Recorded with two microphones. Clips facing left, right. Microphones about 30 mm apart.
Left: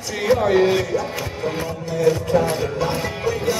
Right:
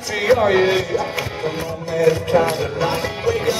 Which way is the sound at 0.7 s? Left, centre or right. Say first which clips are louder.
Right 1 dB; centre.